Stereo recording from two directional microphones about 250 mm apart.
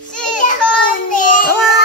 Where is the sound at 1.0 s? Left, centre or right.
Left.